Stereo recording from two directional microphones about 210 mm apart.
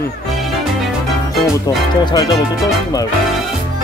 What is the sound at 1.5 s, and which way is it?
Speech, 15° left (ahead or behind).